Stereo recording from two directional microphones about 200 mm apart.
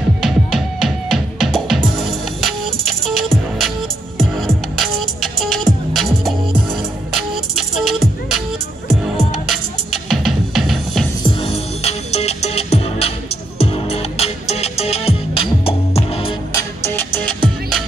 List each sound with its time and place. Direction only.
0.2 s music: centre (ahead or behind)
11.2 s music: 30° left (ahead or behind)
16.5 s music: 10° left (ahead or behind)